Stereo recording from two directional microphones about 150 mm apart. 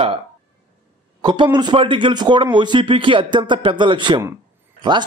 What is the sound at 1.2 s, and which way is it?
Speech, 30° right (ahead or behind).